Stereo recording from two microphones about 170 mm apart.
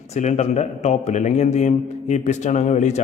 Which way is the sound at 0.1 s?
40° left (ahead or behind).